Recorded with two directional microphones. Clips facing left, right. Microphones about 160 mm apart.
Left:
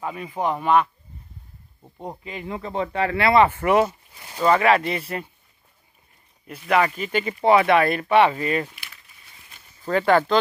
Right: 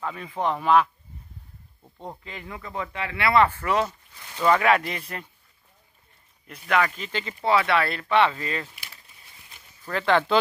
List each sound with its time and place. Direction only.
0.0 s speech: 15° left (ahead or behind)
1.8 s speech: 15° left (ahead or behind); by 3.3 s 40° left (ahead or behind)
3.3 s speech: 15° left (ahead or behind)
4.4 s speech: 5° left (ahead or behind)
7.0 s speech: 10° left (ahead or behind)
8.7 s a sound: 30° right (ahead or behind)
10.0 s speech: 5° left (ahead or behind)